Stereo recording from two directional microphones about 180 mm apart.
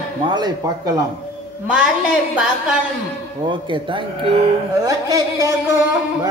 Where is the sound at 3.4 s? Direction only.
25° right (ahead or behind).